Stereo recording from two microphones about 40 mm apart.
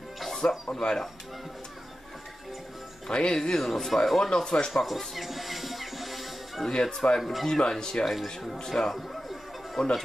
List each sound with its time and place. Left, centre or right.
0.4 s speech: left
0.7 s speech: centre
3.1 s speech: left; by 4.3 s centre
4.3 s speech: centre
4.8 s music: centre
6.7 s speech: centre
8.1 s speech: centre
8.5 s speech: centre